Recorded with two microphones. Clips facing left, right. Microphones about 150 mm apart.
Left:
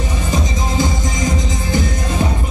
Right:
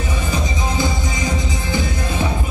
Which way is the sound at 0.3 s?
45° left (ahead or behind).